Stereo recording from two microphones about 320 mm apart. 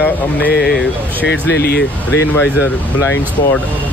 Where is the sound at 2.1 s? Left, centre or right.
Centre.